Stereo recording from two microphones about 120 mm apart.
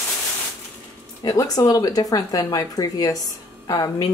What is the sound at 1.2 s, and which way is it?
A woman's voice, 30° left (ahead or behind).